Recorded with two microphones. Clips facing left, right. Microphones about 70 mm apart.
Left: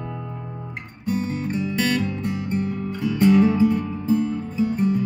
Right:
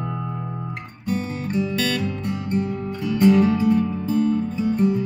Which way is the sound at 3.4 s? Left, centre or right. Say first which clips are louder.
Left 1 dB; left.